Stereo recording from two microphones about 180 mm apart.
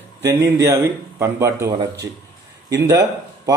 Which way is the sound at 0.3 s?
15° right (ahead or behind).